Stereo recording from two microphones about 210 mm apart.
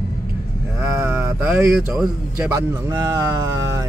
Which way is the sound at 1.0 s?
10° right (ahead or behind).